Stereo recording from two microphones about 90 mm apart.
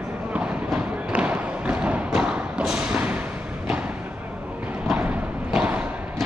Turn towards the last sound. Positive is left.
turn(degrees=-15)  # may be behind; listen again after turning